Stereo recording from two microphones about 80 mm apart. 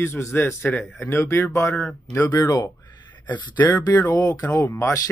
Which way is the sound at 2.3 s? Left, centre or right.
Left.